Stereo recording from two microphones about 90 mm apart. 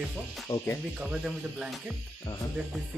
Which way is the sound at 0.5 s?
30° left (ahead or behind).